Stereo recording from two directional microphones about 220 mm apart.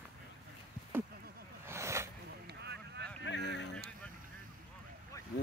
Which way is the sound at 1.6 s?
10° right (ahead or behind).